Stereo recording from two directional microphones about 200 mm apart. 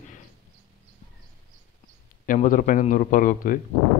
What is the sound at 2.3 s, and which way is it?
Speech, 40° left (ahead or behind).